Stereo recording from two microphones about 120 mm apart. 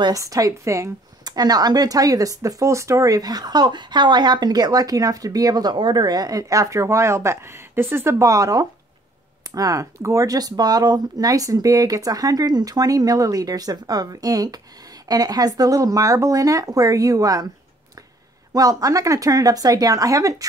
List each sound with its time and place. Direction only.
0.0 s speech: 30° right (ahead or behind)
18.5 s speech: 30° right (ahead or behind)